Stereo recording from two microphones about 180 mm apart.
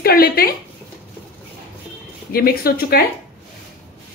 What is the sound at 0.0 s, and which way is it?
Speech, 55° left (ahead or behind).